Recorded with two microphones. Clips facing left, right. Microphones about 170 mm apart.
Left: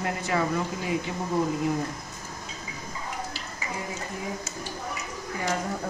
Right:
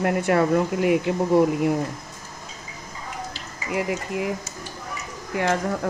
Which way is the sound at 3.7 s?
80° right.